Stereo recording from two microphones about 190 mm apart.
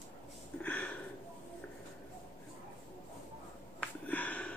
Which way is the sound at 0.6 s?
10° left (ahead or behind).